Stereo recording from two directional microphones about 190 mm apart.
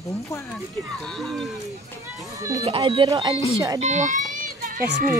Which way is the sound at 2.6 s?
30° right (ahead or behind).